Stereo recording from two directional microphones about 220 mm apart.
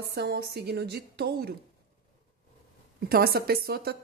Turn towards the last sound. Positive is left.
turn(degrees=-45)  # may be behind; listen again after turning